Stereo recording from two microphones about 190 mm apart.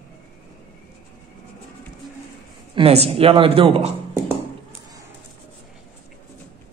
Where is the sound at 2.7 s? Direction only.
30° right (ahead or behind).